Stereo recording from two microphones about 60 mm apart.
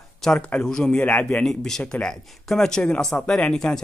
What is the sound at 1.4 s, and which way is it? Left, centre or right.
Speech, centre.